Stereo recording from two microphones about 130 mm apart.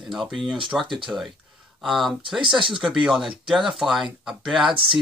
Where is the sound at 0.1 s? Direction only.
Centre (ahead or behind).